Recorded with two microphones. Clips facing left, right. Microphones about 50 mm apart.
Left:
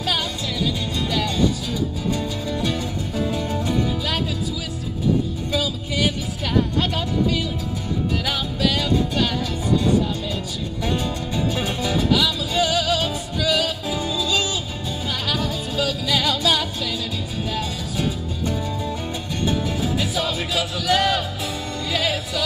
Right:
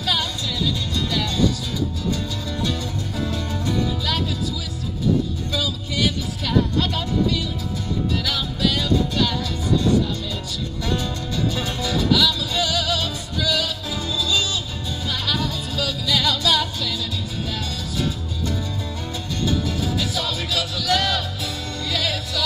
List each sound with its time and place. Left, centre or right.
0.0 s music: left
5.5 s music: left
8.3 s music: left
10.8 s music: centre
19.4 s music: left